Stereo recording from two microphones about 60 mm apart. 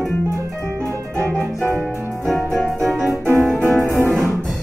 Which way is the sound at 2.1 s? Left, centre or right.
Centre.